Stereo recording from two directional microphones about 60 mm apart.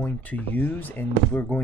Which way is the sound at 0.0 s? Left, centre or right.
Left.